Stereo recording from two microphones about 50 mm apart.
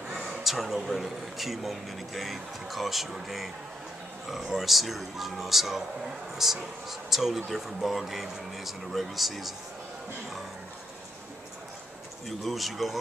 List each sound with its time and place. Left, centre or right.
0.3 s speech: centre
12.3 s speech: centre